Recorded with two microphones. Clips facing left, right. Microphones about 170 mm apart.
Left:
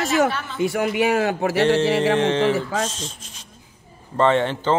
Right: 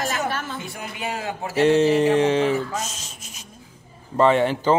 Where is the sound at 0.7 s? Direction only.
70° left (ahead or behind).